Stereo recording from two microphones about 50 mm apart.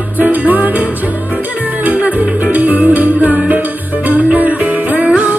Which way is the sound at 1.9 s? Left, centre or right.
Right.